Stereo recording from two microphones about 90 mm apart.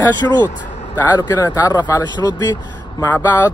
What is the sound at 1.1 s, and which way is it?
Speech, 50° left (ahead or behind).